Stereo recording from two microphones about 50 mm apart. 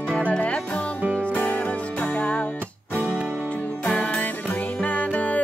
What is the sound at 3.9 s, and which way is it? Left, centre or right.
Music, left.